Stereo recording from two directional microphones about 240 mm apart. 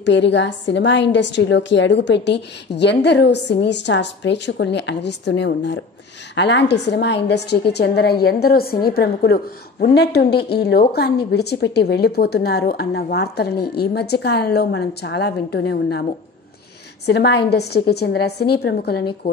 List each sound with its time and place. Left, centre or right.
0.0 s a woman's voice: left